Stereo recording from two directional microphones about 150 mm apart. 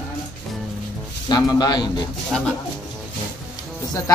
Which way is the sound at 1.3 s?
25° left (ahead or behind).